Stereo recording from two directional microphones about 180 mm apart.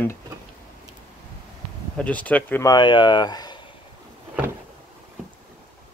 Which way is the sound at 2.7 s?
25° left (ahead or behind).